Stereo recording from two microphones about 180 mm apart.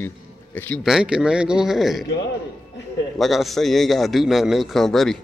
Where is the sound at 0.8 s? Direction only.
5° right (ahead or behind).